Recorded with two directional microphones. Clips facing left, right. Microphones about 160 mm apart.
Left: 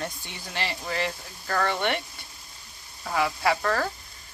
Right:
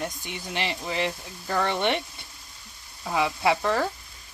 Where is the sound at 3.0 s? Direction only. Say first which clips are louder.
Right 1 dB; 15° right (ahead or behind).